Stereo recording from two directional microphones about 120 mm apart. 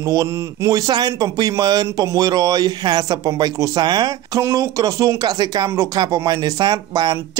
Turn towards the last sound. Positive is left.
turn(degrees=-30)  # may be behind; listen again after turning